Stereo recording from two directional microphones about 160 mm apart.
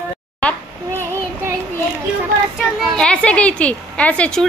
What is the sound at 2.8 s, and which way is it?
A woman's voice, centre (ahead or behind).